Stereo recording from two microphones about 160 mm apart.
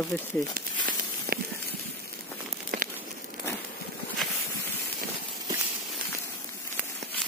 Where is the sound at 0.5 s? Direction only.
65° right (ahead or behind).